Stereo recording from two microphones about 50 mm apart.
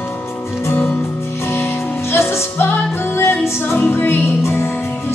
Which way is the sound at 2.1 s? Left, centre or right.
Left.